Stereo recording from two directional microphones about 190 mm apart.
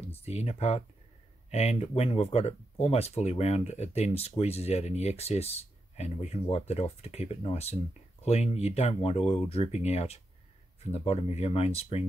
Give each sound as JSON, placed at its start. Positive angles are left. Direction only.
{"t": 0.1, "sound": "speech", "side_deg": 35}